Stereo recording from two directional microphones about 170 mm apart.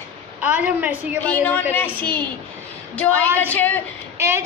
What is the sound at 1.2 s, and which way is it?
Speech, 10° left (ahead or behind).